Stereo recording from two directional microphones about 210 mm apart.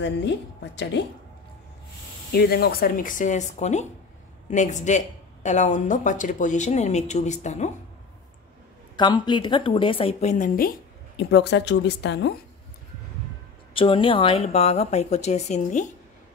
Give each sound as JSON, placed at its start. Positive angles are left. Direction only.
{"t": 1.0, "sound": "speech", "side_deg": 55}
{"t": 2.3, "sound": "speech", "side_deg": 50}
{"t": 8.9, "sound": "speech", "side_deg": 20}
{"t": 10.3, "sound": "speech", "side_deg": 40}
{"t": 11.1, "sound": "speech", "side_deg": 55}
{"t": 13.7, "sound": "speech", "side_deg": 25}